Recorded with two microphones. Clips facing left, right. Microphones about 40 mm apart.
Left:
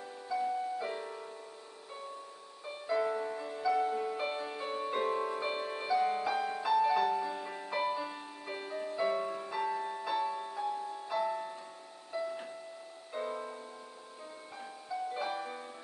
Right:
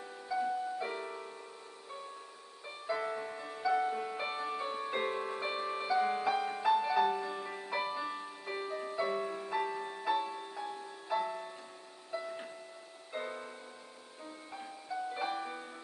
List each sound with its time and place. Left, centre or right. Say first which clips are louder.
0.7 s music: even; centre
2.9 s music: left 4 dB; centre
5.2 s music: left 2 dB; centre
13.1 s music: left 2 dB; right
15.1 s music: even; centre